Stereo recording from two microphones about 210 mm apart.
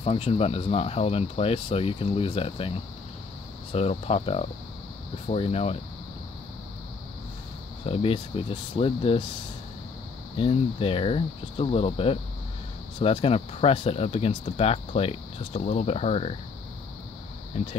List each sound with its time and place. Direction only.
0.0 s speech: 30° left (ahead or behind)
3.7 s speech: 30° left (ahead or behind)
7.8 s speech: 25° left (ahead or behind)
10.3 s speech: 25° left (ahead or behind)
17.5 s speech: 30° left (ahead or behind)